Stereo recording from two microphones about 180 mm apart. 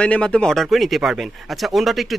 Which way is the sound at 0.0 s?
5° left (ahead or behind).